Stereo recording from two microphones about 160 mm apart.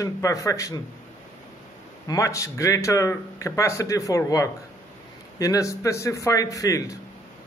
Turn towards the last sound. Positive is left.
turn(degrees=20)  # may be behind; listen again after turning